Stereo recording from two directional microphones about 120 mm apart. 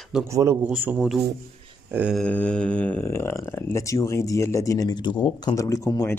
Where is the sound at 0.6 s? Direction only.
15° right (ahead or behind).